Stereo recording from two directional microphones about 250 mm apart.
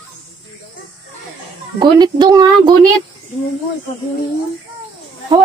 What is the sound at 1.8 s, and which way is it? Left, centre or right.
Speech, centre.